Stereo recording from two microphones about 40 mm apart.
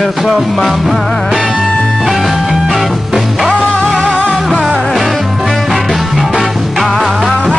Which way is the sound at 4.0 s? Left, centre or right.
Left.